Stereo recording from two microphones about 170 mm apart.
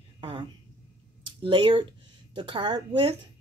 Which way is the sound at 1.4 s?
30° right (ahead or behind).